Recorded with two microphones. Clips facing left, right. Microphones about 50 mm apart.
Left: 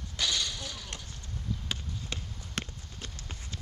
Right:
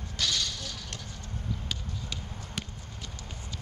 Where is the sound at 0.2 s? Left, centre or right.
Centre.